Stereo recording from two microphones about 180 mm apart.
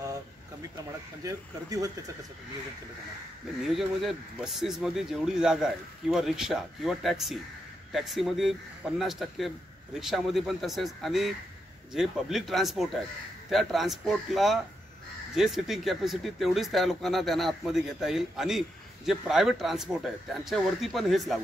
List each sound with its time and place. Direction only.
1.2 s speech: 20° right (ahead or behind)
3.7 s speech: centre (ahead or behind)